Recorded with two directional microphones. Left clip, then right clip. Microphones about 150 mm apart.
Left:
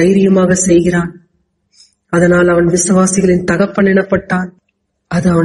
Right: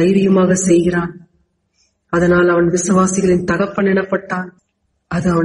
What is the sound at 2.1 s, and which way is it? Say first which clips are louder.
A man's voice: left 3 dB; 20° left (ahead or behind).